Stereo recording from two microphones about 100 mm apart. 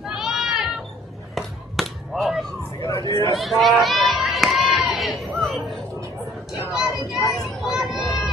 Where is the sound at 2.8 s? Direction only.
35° left (ahead or behind).